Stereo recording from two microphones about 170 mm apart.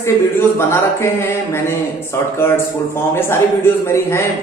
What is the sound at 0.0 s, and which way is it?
A man's voice, 15° left (ahead or behind).